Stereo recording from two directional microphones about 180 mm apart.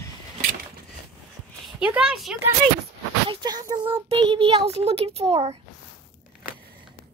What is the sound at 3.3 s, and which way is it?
A child's voice, 25° right (ahead or behind).